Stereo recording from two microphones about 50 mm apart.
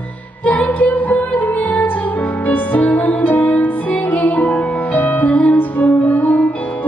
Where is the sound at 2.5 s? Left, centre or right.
Left.